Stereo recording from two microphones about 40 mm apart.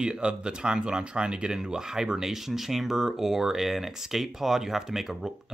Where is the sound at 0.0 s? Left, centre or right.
Right.